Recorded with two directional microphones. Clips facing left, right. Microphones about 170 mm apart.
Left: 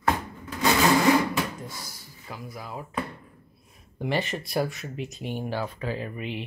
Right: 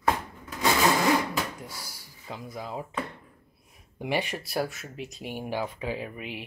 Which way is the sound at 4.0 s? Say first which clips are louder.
Left 1 dB; 15° right (ahead or behind).